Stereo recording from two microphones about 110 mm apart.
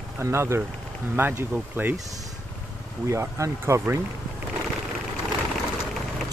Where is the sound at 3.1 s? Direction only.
25° right (ahead or behind).